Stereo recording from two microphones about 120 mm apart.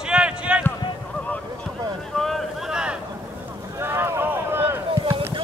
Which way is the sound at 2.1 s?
Centre (ahead or behind).